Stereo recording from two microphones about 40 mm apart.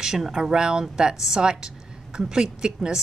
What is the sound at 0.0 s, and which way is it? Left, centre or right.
A woman's voice, centre.